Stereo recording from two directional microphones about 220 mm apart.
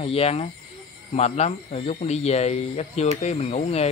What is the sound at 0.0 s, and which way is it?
Speech, 25° left (ahead or behind).